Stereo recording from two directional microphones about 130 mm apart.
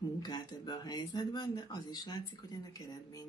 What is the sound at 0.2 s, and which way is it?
Speech, 30° left (ahead or behind).